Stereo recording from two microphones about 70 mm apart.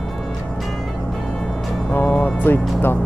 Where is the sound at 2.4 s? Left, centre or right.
Left.